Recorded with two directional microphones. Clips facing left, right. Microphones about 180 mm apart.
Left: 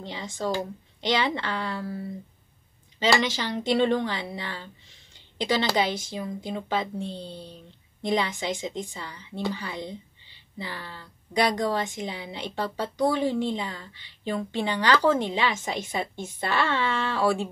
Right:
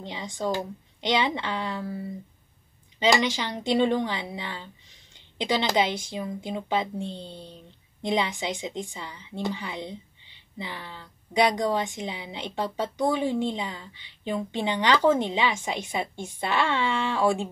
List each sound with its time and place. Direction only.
0.0 s a woman's voice: 15° right (ahead or behind)
3.0 s a woman's voice: 15° right (ahead or behind)